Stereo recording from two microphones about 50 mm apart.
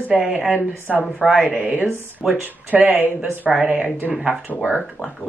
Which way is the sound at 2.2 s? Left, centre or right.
Centre.